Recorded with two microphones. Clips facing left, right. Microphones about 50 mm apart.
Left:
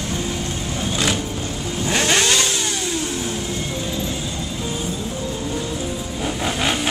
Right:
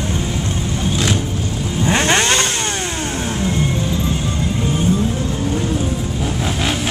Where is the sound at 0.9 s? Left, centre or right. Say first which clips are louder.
Right 2 dB; centre.